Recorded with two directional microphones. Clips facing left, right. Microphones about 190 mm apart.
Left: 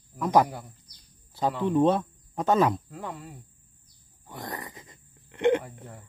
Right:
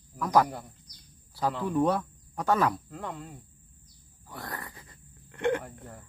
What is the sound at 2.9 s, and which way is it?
Cricket, 5° left (ahead or behind).